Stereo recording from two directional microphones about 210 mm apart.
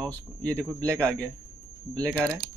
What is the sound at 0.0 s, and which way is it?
Speech, 5° left (ahead or behind).